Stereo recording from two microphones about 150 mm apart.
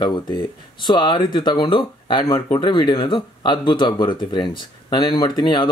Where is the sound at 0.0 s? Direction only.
30° left (ahead or behind).